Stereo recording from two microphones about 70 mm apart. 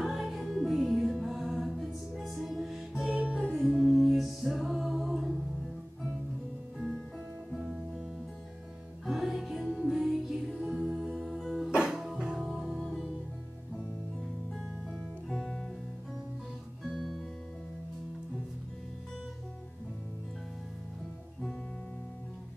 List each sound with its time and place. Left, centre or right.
0.0 s music: centre
3.1 s music: centre
9.0 s music: centre
10.8 s music: centre
11.1 s music: centre
14.9 s music: centre